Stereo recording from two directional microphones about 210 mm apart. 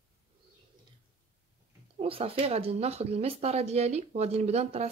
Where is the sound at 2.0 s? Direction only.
25° right (ahead or behind).